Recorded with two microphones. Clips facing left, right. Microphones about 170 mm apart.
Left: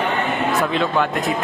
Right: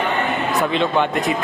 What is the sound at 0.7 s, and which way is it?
Speech, centre (ahead or behind).